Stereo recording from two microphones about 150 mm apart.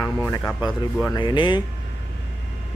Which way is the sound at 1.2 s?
30° left (ahead or behind).